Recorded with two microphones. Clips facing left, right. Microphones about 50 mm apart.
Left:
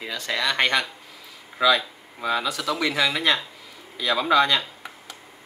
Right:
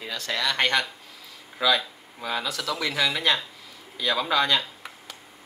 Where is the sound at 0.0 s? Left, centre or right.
Centre.